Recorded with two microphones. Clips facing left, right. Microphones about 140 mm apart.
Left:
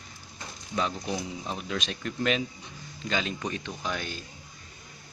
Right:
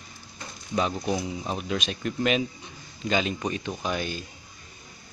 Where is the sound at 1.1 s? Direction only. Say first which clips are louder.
Right 4 dB; 10° right (ahead or behind).